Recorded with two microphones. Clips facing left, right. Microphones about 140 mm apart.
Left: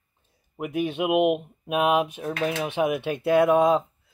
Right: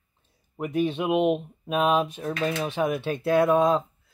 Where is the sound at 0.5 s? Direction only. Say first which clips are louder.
Right 1 dB; 10° left (ahead or behind).